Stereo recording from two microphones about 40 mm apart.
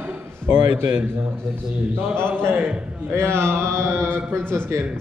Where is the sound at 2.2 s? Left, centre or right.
Right.